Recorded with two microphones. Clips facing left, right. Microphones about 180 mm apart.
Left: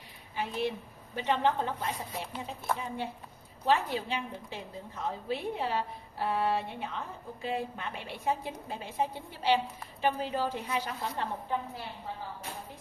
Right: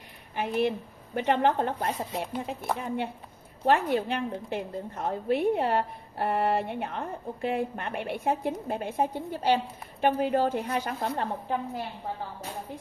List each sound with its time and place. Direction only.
0.4 s a woman's voice: 60° right (ahead or behind)
10.0 s a woman's voice: 55° right (ahead or behind)